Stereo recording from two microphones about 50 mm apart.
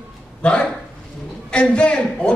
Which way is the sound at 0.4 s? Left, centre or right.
Left.